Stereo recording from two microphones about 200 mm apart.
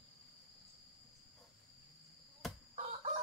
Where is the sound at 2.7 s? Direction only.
35° right (ahead or behind).